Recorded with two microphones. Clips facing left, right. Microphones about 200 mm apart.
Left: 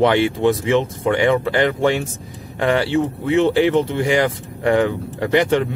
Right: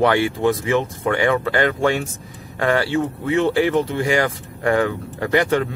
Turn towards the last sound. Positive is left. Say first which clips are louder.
# left 2 dB
turn(degrees=20)  # may be behind; listen again after turning